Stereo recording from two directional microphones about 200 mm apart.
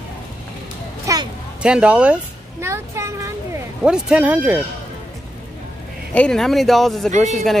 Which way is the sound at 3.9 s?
5° right (ahead or behind).